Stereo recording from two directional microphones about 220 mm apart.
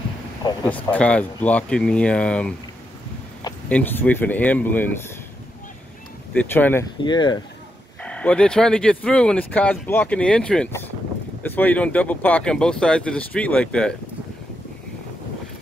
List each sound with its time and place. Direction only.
0.7 s speech: 5° left (ahead or behind)
3.6 s speech: 5° left (ahead or behind)
6.3 s speech: 10° left (ahead or behind)
7.0 s speech: 20° left (ahead or behind)
8.0 s speech: 5° left (ahead or behind)